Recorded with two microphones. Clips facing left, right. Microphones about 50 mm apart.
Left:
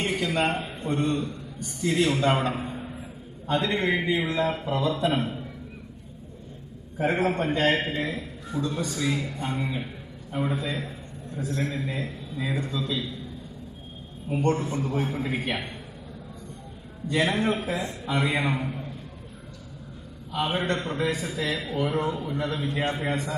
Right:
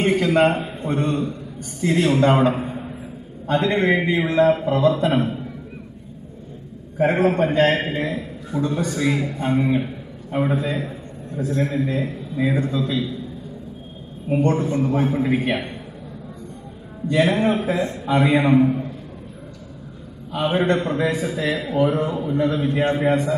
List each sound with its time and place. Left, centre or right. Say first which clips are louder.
0.0 s a man's voice: right 9 dB; right
0.6 s a man's voice: right 4 dB; right
2.0 s speech: right 9 dB; centre
2.5 s a sound: right 6 dB; right
3.4 s a man's voice: right 6 dB; right
5.1 s a man's voice: right 6 dB; right
7.0 s a man's voice: right 7 dB; right
7.8 s a man's voice: right 5 dB; right
14.4 s a man's voice: right 5 dB; right
17.1 s speech: right 6 dB; centre
17.4 s a man's voice: right 6 dB; right
20.5 s a man's voice: right 8 dB; right